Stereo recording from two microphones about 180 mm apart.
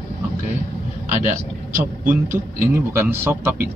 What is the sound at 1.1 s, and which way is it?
Speech, 45° right (ahead or behind).